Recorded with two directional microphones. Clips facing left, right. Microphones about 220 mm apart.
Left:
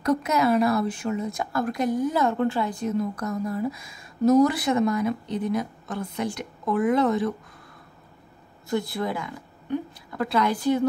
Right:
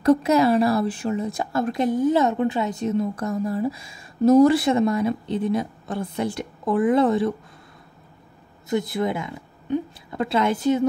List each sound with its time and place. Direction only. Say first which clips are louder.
0.0 s a woman's voice: right 5 dB; 30° right (ahead or behind)
8.6 s a woman's voice: right 3 dB; 20° right (ahead or behind)